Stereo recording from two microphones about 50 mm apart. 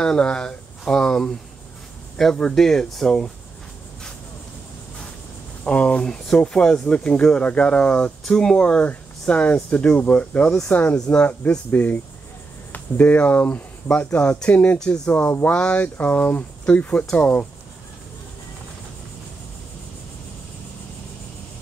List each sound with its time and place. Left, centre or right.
0.0 s speech: centre
2.3 s speech: centre
5.7 s speech: left
8.2 s speech: centre; by 15.2 s left
15.2 s speech: left
15.5 s speech: left